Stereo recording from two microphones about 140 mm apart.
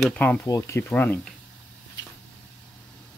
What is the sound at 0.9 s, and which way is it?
Speech, 10° left (ahead or behind).